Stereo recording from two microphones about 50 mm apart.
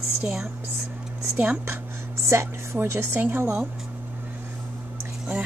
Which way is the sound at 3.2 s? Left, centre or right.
Right.